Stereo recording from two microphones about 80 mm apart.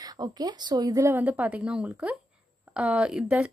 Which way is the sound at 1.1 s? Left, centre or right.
Right.